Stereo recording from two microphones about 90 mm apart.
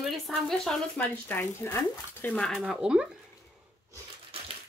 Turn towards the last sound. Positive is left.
turn(degrees=-10)  # may be behind; listen again after turning